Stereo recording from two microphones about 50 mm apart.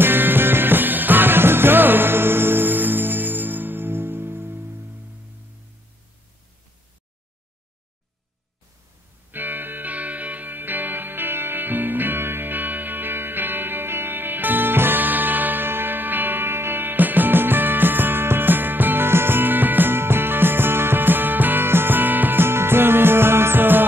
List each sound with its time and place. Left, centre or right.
0.0 s music: right
9.3 s music: right